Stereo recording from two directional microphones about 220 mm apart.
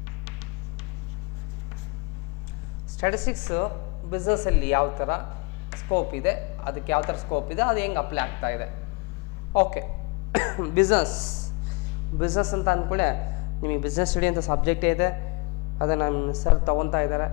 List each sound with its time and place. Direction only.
3.0 s a woman's voice: 15° left (ahead or behind)
11.1 s speech: 25° left (ahead or behind)